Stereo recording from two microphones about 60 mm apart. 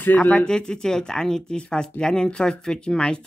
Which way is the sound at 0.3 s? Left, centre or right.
Centre.